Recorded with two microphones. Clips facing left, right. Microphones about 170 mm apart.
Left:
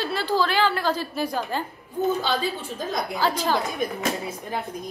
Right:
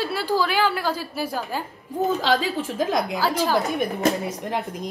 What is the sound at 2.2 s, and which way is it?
Speech, 90° right.